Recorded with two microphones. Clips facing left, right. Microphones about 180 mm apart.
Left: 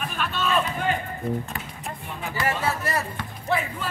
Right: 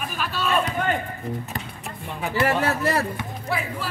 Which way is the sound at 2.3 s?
65° right (ahead or behind).